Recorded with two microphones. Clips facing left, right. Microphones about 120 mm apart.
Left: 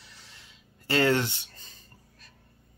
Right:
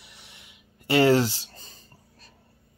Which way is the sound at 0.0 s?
20° right (ahead or behind).